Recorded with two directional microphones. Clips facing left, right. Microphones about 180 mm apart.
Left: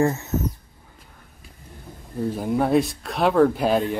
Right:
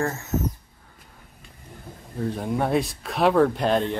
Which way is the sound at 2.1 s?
5° left (ahead or behind).